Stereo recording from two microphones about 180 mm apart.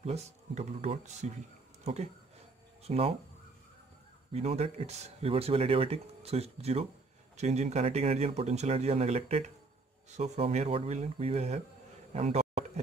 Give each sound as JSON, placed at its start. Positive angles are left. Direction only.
{"t": 0.0, "sound": "speech", "side_deg": -35}
{"t": 2.8, "sound": "speech", "side_deg": -35}
{"t": 4.3, "sound": "speech", "side_deg": -35}
{"t": 12.1, "sound": "a sound", "side_deg": -35}